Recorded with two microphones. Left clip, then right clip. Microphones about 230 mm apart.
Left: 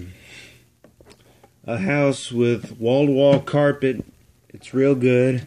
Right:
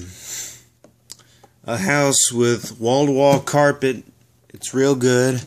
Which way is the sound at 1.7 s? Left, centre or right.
Centre.